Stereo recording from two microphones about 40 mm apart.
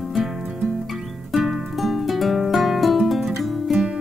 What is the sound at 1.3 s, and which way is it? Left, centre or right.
Music, centre.